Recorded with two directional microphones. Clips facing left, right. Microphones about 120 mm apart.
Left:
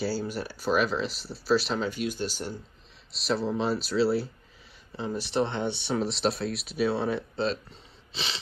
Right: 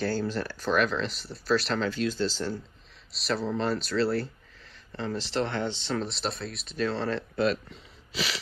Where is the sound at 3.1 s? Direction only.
Centre (ahead or behind).